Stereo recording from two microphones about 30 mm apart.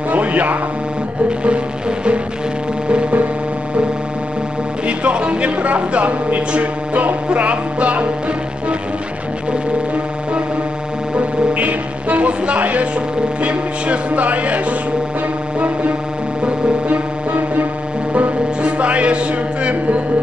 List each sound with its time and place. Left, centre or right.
0.1 s music: right
1.4 s music: right
4.8 s music: right
5.7 s speech: right
6.6 s a sound: right
7.3 s speech: right
11.1 s music: right
12.5 s a sound: right
13.4 s speech: right
18.6 s speech: right